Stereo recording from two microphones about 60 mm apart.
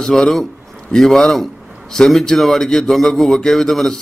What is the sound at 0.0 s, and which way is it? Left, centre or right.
A man's voice, centre.